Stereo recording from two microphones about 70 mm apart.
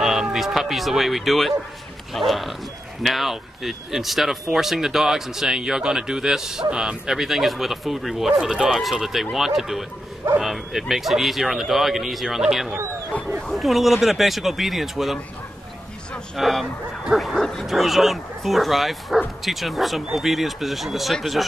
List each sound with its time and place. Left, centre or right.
0.0 s speech: centre
13.1 s speech: left
13.5 s speech: centre
16.3 s speech: centre
17.4 s speech: centre